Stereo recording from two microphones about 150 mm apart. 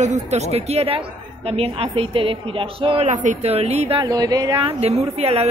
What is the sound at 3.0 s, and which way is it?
Speech, 55° right (ahead or behind).